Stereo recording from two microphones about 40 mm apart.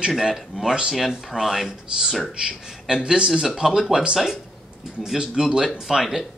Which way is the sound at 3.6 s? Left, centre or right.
Centre.